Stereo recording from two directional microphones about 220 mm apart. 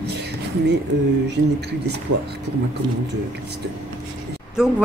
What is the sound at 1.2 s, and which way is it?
Speech, 50° right (ahead or behind).